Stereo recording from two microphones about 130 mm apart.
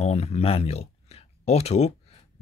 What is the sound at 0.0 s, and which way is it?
Speech, 55° left (ahead or behind).